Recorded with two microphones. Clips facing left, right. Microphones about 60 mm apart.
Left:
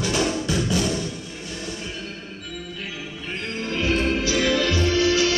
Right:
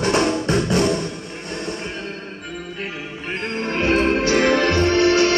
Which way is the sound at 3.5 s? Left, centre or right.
Right.